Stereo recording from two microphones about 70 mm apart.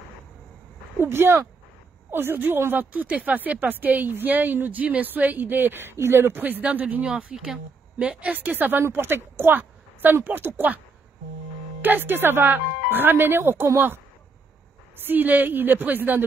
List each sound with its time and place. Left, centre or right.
0.9 s a woman's voice: right
7.3 s a woman's voice: centre; by 10.8 s right
11.8 s speech: right
15.0 s a woman's voice: right